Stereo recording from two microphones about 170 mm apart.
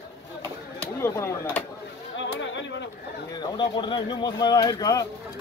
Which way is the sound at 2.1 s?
90° left.